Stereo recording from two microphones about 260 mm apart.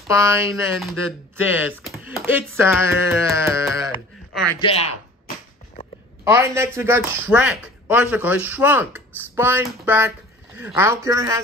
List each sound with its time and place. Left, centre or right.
0.1 s speech: centre
4.6 s speech: left
6.2 s speech: centre